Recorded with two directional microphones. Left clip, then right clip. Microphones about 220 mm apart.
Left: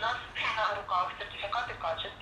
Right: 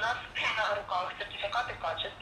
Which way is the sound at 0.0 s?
15° right (ahead or behind).